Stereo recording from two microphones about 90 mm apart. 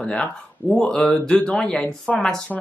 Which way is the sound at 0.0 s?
15° left (ahead or behind).